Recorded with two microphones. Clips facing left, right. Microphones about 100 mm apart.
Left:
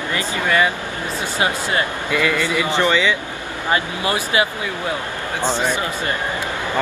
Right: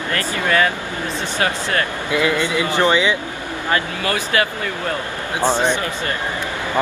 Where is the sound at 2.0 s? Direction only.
20° right (ahead or behind).